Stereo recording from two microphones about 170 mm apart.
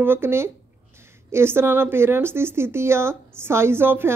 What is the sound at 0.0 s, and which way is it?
A woman's voice, 15° right (ahead or behind).